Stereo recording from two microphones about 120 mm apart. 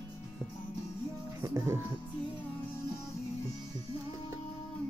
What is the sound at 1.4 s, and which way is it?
Music, 25° right (ahead or behind).